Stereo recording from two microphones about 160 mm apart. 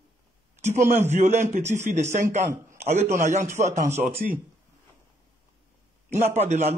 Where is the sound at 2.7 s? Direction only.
45° right (ahead or behind).